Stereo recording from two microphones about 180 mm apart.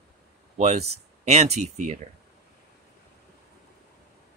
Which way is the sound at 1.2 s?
40° right (ahead or behind).